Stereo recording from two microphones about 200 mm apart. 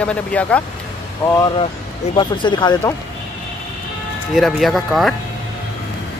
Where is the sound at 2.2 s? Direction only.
25° left (ahead or behind).